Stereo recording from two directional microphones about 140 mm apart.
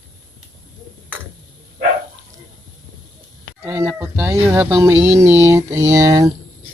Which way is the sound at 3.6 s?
15° right (ahead or behind).